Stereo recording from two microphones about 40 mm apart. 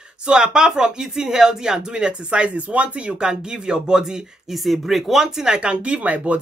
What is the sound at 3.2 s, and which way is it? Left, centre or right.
Speech, centre.